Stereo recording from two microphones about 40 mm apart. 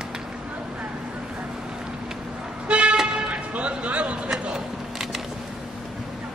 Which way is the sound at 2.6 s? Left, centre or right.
Right.